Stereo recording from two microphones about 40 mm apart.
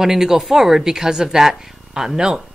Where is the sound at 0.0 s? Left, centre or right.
Centre.